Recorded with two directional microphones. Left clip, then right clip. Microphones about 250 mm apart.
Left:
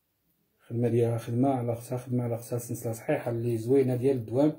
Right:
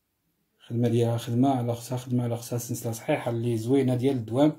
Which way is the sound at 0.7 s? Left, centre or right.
Right.